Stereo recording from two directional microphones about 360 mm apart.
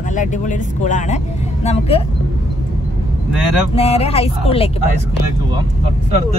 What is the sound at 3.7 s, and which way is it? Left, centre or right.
Speech, centre.